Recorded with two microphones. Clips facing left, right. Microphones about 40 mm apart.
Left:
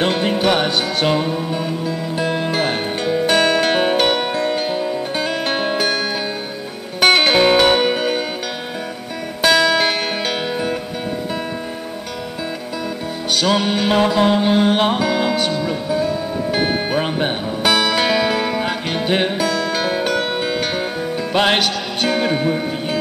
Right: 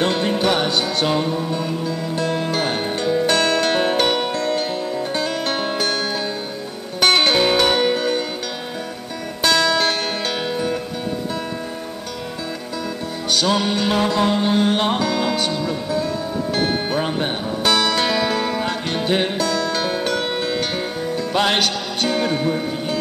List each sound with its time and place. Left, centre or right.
0.1 s music: centre
9.4 s music: centre
13.3 s music: centre
21.5 s speech: centre